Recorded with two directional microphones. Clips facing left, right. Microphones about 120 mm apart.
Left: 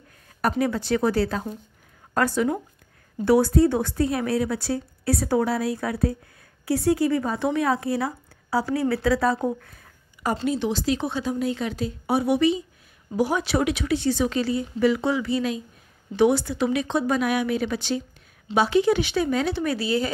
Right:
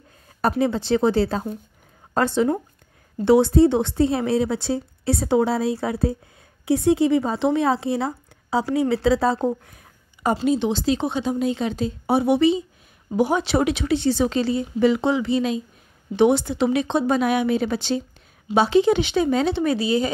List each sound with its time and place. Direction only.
0.4 s a woman's voice: 25° right (ahead or behind)